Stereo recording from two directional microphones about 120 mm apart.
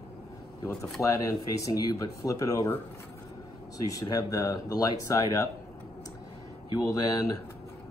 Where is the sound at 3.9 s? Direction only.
30° left (ahead or behind).